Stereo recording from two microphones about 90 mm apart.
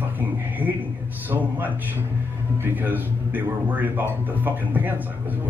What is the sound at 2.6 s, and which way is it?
Speech, 20° right (ahead or behind).